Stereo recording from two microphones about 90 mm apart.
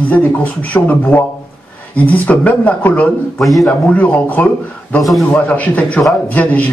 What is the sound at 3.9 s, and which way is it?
Speech, 20° left (ahead or behind).